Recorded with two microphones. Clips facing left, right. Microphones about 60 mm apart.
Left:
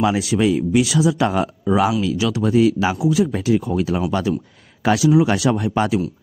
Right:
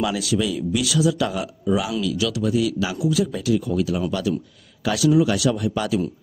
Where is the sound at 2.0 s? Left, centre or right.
Left.